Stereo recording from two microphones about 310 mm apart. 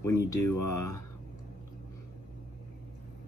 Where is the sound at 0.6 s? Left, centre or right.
Left.